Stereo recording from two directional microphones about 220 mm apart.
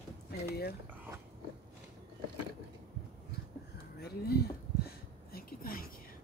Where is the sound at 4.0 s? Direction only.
45° left (ahead or behind).